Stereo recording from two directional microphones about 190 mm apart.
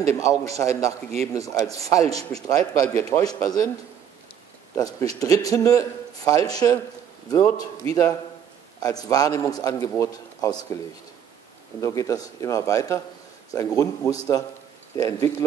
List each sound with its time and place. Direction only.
0.1 s a man's voice: 15° left (ahead or behind)
4.7 s a man's voice: 20° left (ahead or behind)
11.8 s a man's voice: 15° left (ahead or behind)